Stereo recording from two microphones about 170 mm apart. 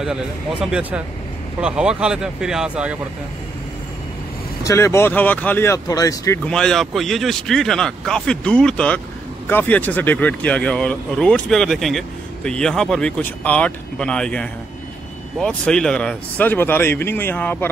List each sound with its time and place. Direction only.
0.0 s speech: 5° right (ahead or behind)
4.6 s speech: 15° left (ahead or behind)
6.4 s speech: 5° left (ahead or behind)